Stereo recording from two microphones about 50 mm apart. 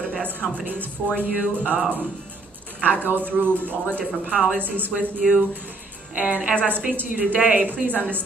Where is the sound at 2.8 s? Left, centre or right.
Right.